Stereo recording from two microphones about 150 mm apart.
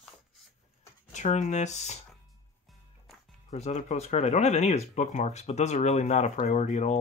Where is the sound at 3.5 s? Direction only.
50° left (ahead or behind).